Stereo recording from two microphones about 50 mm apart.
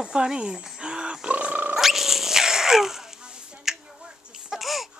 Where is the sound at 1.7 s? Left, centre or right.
Centre.